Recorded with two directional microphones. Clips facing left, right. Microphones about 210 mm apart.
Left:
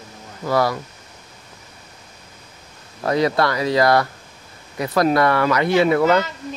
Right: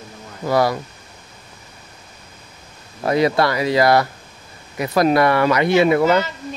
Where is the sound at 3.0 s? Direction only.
10° right (ahead or behind).